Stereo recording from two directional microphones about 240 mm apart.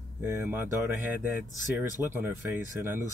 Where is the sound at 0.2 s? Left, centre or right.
Centre.